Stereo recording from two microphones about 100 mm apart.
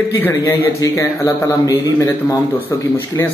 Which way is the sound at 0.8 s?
35° left (ahead or behind).